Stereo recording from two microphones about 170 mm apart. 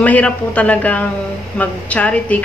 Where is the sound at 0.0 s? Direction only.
10° left (ahead or behind).